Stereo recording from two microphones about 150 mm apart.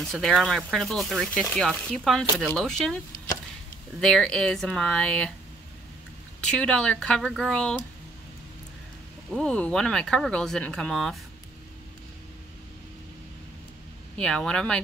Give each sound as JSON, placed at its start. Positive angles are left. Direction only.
{"t": 0.0, "sound": "speech", "side_deg": 0}
{"t": 4.0, "sound": "speech", "side_deg": 5}
{"t": 6.4, "sound": "speech", "side_deg": 5}
{"t": 9.3, "sound": "speech", "side_deg": 5}
{"t": 14.1, "sound": "speech", "side_deg": 5}